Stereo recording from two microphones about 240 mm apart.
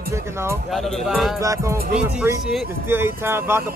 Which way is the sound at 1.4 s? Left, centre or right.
Centre.